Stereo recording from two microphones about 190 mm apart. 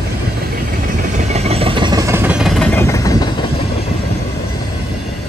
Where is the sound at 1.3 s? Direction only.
30° right (ahead or behind); by 3.3 s 15° left (ahead or behind).